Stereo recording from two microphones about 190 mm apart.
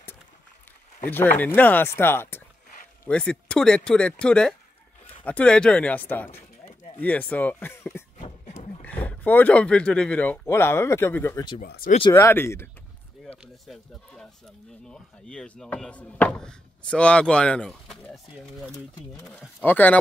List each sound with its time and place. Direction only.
1.4 s speech: 10° left (ahead or behind)
8.2 s a sound: 35° left (ahead or behind)
8.8 s speech: 10° left (ahead or behind)
11.6 s speech: 55° left (ahead or behind)
12.1 s speech: 10° left (ahead or behind)
13.7 s speech: 5° left (ahead or behind)